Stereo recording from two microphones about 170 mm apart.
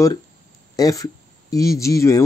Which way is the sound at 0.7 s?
20° left (ahead or behind).